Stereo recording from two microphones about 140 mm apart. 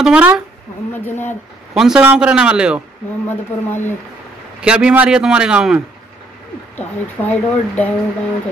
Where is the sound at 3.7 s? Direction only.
15° left (ahead or behind).